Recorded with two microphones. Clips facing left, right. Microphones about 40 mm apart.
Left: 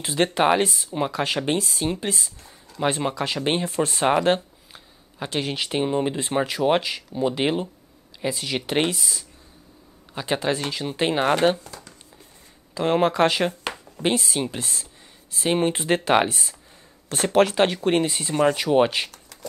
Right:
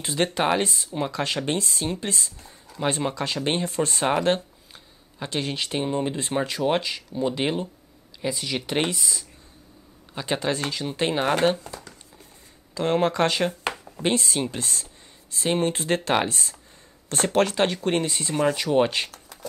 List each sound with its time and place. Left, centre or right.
0.0 s speech: centre
12.7 s speech: centre
13.7 s a sound: centre
14.0 s speech: centre